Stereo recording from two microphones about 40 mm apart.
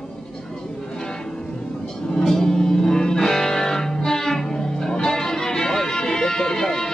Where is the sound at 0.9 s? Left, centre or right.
Centre.